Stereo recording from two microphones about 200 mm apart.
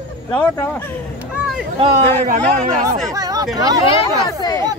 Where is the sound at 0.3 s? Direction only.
10° left (ahead or behind).